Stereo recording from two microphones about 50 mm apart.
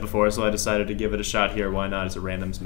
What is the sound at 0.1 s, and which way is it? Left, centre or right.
Speech, centre.